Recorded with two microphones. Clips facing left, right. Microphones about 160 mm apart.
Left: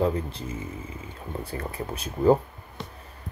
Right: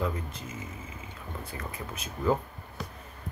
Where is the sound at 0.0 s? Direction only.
30° left (ahead or behind).